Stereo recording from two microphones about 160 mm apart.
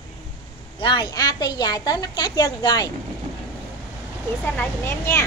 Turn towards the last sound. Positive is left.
turn(degrees=15)  # may be behind; listen again after turning